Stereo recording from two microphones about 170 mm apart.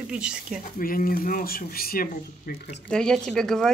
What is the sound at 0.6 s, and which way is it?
Speech, 55° left (ahead or behind).